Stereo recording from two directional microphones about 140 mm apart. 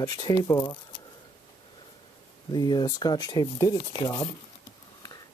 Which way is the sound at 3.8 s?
40° left (ahead or behind).